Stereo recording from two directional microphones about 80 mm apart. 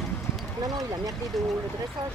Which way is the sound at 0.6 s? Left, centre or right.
Right.